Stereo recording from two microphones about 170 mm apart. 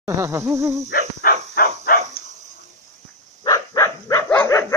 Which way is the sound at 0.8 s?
60° left (ahead or behind).